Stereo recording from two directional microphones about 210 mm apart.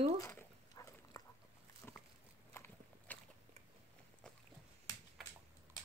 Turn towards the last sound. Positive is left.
turn(degrees=0)  # may be behind; listen again after turning